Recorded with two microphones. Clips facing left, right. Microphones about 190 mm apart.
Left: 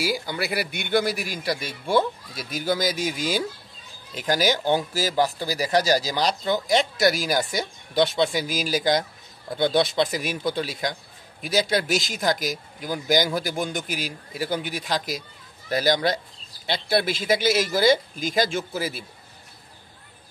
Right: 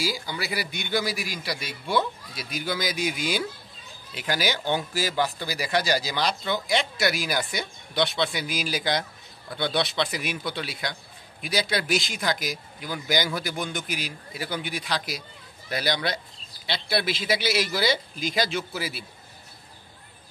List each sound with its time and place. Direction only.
0.0 s speech: 55° left (ahead or behind)